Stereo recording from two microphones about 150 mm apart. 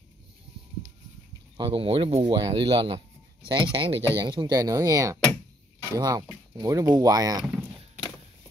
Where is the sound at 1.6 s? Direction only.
35° right (ahead or behind).